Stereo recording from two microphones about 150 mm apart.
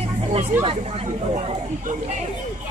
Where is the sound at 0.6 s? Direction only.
40° right (ahead or behind).